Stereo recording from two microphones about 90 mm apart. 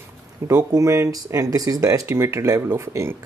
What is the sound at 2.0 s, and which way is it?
Speech, 30° right (ahead or behind).